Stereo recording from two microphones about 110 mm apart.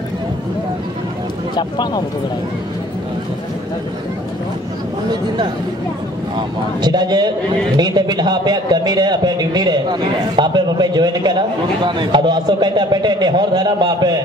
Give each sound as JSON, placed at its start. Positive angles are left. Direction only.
{"t": 1.5, "sound": "speech", "side_deg": 40}
{"t": 6.3, "sound": "a man's voice", "side_deg": -40}